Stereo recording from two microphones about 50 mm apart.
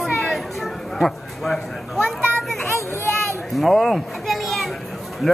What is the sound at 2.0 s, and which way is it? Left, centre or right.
Children playing, right.